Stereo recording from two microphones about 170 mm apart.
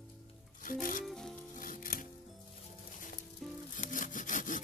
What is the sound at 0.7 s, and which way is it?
Music, 55° left (ahead or behind).